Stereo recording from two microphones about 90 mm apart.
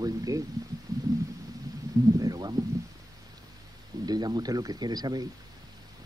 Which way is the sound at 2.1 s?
45° right (ahead or behind).